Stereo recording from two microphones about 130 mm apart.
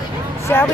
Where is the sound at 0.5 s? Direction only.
15° left (ahead or behind).